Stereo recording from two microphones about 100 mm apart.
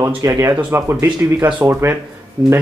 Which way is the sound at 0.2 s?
35° right (ahead or behind).